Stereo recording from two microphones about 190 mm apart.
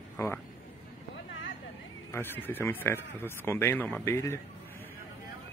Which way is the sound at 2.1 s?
10° left (ahead or behind).